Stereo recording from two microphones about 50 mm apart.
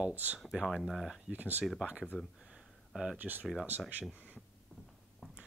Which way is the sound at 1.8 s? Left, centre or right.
Centre.